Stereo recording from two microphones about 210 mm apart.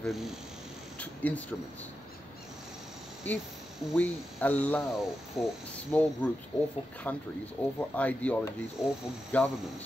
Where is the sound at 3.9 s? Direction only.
5° left (ahead or behind).